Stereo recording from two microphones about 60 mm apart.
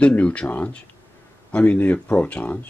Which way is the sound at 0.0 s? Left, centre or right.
Left.